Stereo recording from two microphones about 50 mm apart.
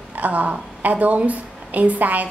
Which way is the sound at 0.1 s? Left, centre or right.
Right.